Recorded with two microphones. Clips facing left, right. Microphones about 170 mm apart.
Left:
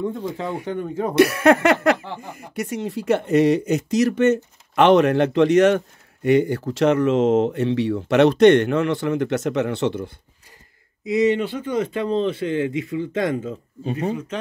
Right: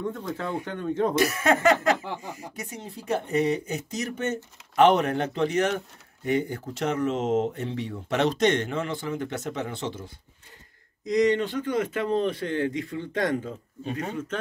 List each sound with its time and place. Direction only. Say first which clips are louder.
0.1 s speech: left 4 dB; 20° left (ahead or behind)
1.1 s speech: left 13 dB; 70° left (ahead or behind)
2.1 s speech: left 7 dB; 55° left (ahead or behind)
11.1 s speech: left 3 dB; 10° left (ahead or behind)